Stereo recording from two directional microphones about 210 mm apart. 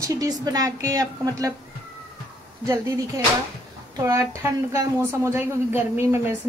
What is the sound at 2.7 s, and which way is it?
Speech, 15° right (ahead or behind).